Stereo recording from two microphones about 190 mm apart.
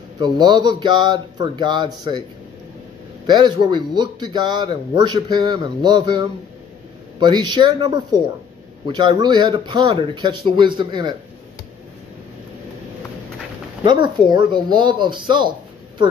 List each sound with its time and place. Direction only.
0.2 s speech: 20° right (ahead or behind)
3.3 s speech: 25° right (ahead or behind)
14.2 s speech: 25° right (ahead or behind)